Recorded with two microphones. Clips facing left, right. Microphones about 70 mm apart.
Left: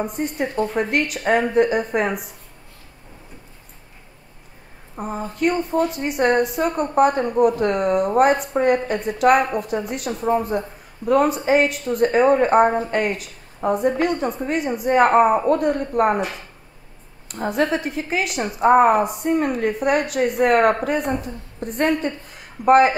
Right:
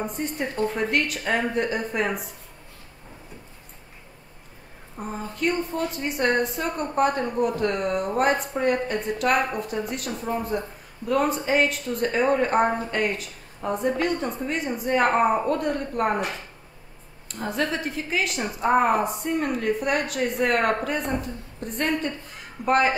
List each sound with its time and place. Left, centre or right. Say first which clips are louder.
0.0 s a woman's voice: left 4 dB; centre
4.9 s a woman's voice: left 5 dB; left
17.3 s a woman's voice: left 6 dB; centre
19.2 s a woman's voice: left 4 dB; left